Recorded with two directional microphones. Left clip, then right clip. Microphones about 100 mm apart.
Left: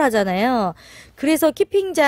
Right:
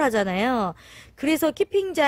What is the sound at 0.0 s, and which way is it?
A woman's voice, 35° left (ahead or behind).